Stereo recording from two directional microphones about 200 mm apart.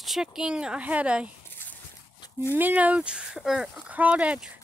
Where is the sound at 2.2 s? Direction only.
10° left (ahead or behind).